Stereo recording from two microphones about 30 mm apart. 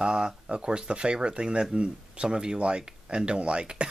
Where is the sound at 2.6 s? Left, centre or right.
Right.